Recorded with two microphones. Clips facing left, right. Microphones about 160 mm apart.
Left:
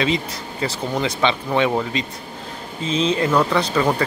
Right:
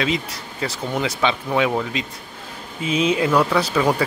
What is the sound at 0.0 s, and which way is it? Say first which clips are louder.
Speech: left 2 dB; centre (ahead or behind).